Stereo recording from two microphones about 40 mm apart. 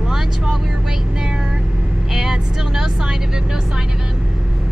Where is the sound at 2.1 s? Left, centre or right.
Centre.